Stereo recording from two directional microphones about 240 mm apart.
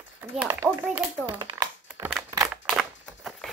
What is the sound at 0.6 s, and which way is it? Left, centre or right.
Child singing, centre.